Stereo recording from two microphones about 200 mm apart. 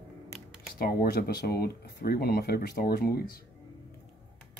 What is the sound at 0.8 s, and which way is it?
Speech, 50° left (ahead or behind).